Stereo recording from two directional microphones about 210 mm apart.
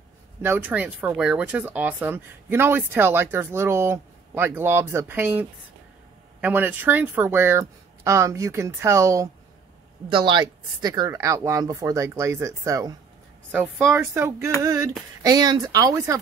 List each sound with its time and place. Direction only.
0.4 s speech: 10° right (ahead or behind)